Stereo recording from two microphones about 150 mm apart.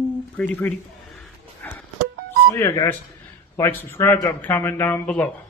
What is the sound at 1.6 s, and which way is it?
Music, 10° left (ahead or behind).